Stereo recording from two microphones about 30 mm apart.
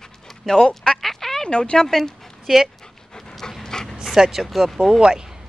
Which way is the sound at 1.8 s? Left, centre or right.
Centre.